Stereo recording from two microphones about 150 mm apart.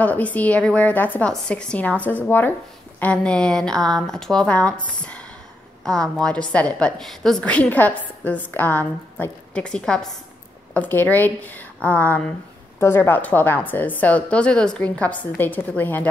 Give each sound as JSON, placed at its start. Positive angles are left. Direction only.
{"t": 0.0, "sound": "a woman's voice", "side_deg": 10}